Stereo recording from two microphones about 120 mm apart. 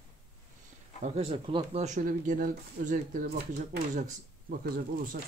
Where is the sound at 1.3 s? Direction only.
50° right (ahead or behind); by 3.2 s 90° right.